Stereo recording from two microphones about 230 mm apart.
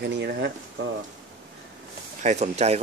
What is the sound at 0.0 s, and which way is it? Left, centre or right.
Speech, right.